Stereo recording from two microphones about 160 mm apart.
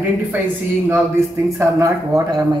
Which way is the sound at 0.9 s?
15° right (ahead or behind).